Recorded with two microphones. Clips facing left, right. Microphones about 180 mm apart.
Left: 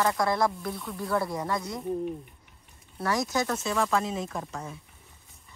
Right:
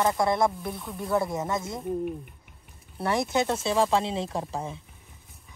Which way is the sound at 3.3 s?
25° right (ahead or behind).